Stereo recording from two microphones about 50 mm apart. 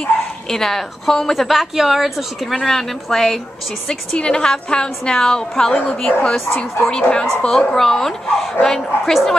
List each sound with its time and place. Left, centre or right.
0.0 s a woman's voice: centre
7.4 s a woman's voice: centre